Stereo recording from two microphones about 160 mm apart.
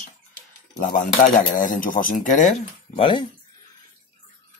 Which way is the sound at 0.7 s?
55° left (ahead or behind).